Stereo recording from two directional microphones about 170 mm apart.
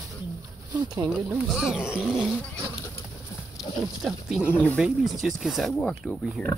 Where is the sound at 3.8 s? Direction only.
5° right (ahead or behind).